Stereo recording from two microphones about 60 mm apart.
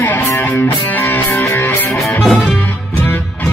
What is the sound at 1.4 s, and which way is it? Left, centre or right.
Music, left.